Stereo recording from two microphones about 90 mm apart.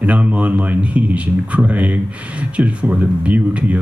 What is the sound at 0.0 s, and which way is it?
Speech, 15° right (ahead or behind).